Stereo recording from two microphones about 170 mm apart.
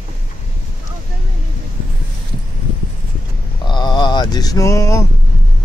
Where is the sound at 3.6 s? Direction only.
25° left (ahead or behind).